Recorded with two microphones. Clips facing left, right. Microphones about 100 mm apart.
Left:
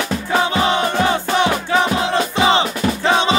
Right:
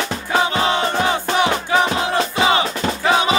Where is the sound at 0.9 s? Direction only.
15° right (ahead or behind).